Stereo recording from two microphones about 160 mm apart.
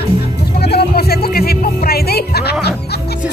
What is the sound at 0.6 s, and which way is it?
Music, 85° left.